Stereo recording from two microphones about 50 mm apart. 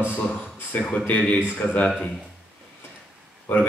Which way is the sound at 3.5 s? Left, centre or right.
Left.